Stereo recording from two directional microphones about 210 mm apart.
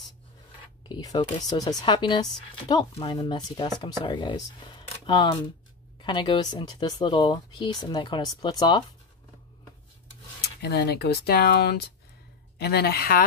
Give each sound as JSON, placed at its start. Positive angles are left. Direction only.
{"t": 0.8, "sound": "speech", "side_deg": 20}
{"t": 10.4, "sound": "speech", "side_deg": 50}